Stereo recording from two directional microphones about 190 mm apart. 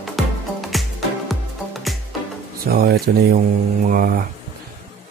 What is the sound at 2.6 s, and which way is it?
Speech, 55° right (ahead or behind).